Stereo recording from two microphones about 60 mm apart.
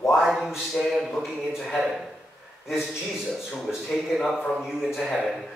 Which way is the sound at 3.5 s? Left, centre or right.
Centre.